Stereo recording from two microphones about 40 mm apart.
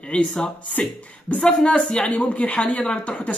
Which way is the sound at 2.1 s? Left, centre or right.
Left.